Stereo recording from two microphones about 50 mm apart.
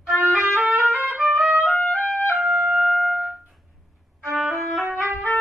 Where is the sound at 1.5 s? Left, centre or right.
Right.